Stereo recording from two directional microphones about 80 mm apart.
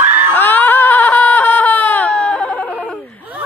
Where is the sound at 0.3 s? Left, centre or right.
Left.